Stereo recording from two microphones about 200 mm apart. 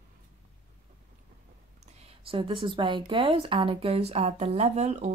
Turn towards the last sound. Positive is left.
turn(degrees=-35)  # may be behind; listen again after turning